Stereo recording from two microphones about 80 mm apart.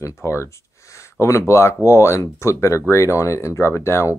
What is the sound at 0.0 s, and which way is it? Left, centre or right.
Speech, left.